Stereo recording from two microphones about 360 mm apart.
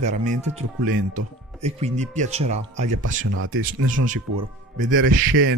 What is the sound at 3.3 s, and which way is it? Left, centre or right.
Speech, right.